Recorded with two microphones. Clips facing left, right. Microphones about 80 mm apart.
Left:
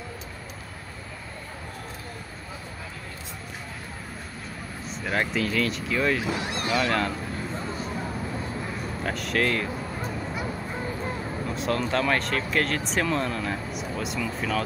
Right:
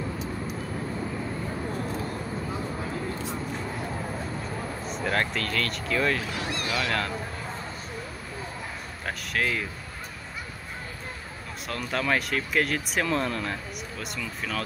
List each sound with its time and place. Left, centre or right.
5.0 s speech: centre
6.3 s speech: left
6.7 s speech: centre
9.0 s speech: centre
11.8 s speech: centre